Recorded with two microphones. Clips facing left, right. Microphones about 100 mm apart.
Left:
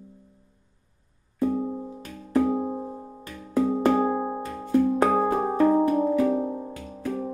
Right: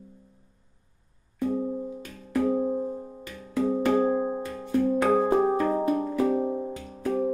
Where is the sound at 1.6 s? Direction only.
20° left (ahead or behind).